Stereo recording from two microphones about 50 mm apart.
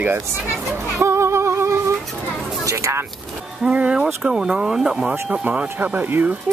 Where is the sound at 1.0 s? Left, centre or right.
Right.